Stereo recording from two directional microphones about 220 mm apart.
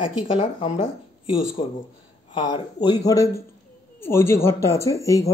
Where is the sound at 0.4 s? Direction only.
30° left (ahead or behind).